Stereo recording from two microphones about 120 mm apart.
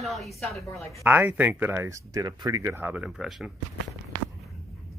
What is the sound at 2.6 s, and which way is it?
Speech, 15° right (ahead or behind).